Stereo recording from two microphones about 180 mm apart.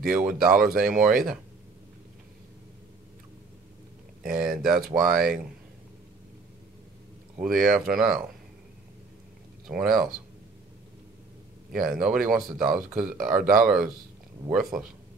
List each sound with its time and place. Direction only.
0.0 s speech: 5° right (ahead or behind)
4.3 s speech: 5° right (ahead or behind)
7.3 s speech: centre (ahead or behind)
9.7 s speech: centre (ahead or behind)
11.7 s speech: centre (ahead or behind)
13.4 s speech: 50° right (ahead or behind)
14.5 s speech: 5° right (ahead or behind)